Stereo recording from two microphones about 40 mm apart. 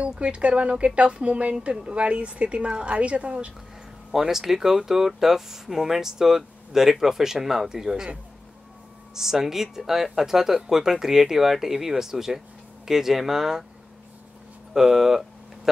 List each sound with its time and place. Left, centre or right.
0.2 s speech: right
4.1 s speech: centre
9.1 s speech: centre
14.7 s a sound: centre